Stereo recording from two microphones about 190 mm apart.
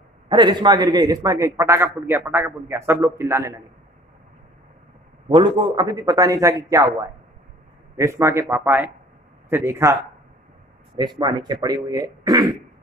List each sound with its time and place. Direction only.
0.3 s a man's voice: 25° right (ahead or behind)
5.3 s a man's voice: 25° right (ahead or behind)
8.0 s a man's voice: 15° right (ahead or behind)
11.0 s speech: 25° right (ahead or behind)